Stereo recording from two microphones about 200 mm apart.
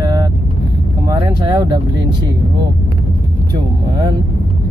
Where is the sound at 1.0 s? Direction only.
20° right (ahead or behind).